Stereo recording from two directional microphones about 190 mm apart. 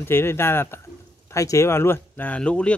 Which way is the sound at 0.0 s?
10° left (ahead or behind).